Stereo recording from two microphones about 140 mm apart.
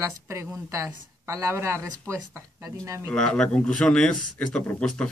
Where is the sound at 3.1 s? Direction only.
5° left (ahead or behind).